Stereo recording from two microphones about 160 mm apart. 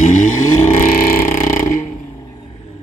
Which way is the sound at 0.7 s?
60° left (ahead or behind).